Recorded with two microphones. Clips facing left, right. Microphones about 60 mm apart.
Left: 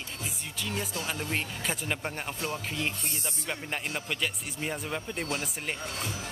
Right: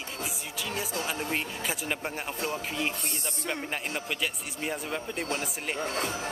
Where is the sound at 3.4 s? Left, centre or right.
Centre.